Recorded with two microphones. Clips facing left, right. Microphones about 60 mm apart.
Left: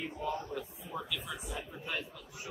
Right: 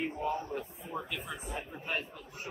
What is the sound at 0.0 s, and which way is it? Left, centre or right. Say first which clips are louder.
A man's voice: right 3 dB; right.